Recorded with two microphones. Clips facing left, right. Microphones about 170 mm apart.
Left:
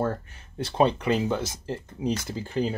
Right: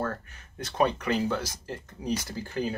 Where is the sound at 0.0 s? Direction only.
25° left (ahead or behind).